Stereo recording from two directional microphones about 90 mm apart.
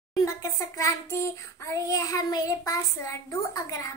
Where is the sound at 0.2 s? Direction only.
35° left (ahead or behind).